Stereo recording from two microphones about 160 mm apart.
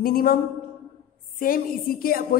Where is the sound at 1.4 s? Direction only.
65° left (ahead or behind).